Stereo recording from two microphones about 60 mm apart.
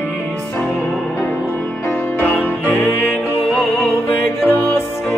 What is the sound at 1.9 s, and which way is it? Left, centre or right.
Music, left.